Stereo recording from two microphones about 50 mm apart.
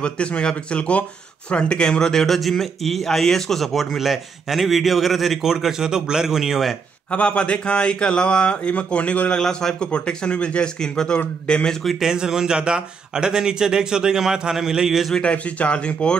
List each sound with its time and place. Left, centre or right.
0.0 s speech: left; by 6.8 s centre
7.1 s speech: left
9.4 s speech: centre
12.0 s speech: centre
15.3 s speech: left